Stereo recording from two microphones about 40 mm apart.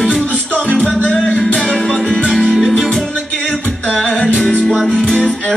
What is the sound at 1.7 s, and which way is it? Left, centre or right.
Music, centre.